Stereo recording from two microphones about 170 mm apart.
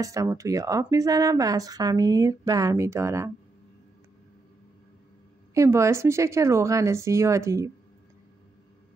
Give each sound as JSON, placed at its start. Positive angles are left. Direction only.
{"t": 0.0, "sound": "speech", "side_deg": -20}
{"t": 5.5, "sound": "speech", "side_deg": -15}